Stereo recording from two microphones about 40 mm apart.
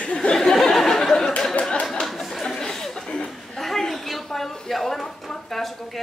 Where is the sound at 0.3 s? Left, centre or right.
Centre.